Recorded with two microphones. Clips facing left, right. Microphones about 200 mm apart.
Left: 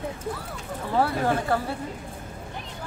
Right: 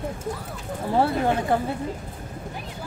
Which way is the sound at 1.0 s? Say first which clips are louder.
Right 2 dB; 20° right (ahead or behind).